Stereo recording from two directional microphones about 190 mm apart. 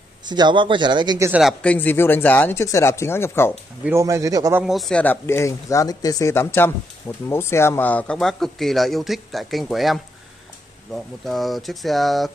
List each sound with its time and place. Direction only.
0.2 s speech: 25° right (ahead or behind)
1.6 s speech: 5° left (ahead or behind)
3.8 s speech: 15° right (ahead or behind)
4.6 s speech: centre (ahead or behind)
11.2 s speech: centre (ahead or behind)